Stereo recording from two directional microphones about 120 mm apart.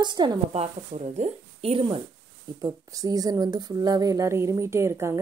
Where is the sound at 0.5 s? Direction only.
65° right (ahead or behind).